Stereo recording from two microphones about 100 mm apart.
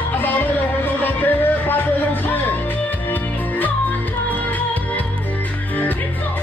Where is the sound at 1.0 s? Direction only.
20° left (ahead or behind).